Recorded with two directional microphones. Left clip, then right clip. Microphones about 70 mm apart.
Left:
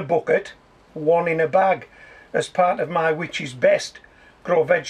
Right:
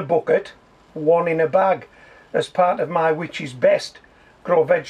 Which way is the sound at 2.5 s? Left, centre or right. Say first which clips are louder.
Right 1 dB; centre.